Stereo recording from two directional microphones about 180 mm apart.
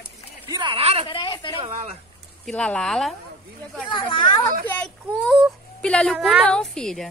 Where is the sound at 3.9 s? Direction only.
30° left (ahead or behind).